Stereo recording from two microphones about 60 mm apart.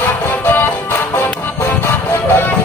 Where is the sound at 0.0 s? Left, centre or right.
Left.